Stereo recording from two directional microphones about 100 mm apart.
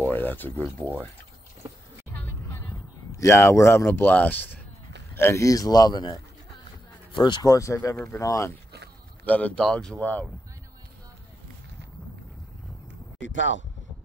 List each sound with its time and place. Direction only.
0.0 s a sound: 20° left (ahead or behind)
3.1 s a man's voice: 30° left (ahead or behind); by 7.5 s 50° left (ahead or behind)
7.5 s a man's voice: 35° left (ahead or behind)
9.2 s speech: 15° left (ahead or behind)